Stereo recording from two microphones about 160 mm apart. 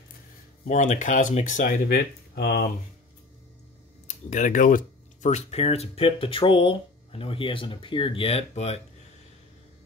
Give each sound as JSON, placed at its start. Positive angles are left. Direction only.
{"t": 0.7, "sound": "speech", "side_deg": 50}
{"t": 4.1, "sound": "speech", "side_deg": 50}